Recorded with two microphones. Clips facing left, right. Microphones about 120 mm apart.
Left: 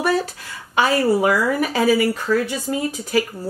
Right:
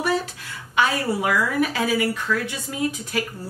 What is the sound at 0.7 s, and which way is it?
Speech, 35° left (ahead or behind).